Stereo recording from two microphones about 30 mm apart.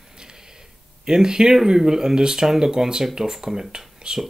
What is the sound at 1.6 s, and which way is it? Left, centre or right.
Speech, centre.